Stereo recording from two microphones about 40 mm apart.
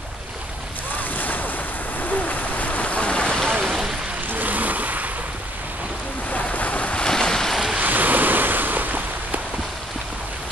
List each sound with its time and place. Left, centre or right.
0.9 s boat: left
3.6 s boat: centre
4.3 s vehicle: right
6.3 s boat: left
7.1 s boat: centre
7.8 s waves: right